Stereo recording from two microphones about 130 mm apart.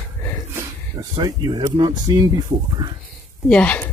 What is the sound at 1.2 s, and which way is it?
Speech, 30° right (ahead or behind).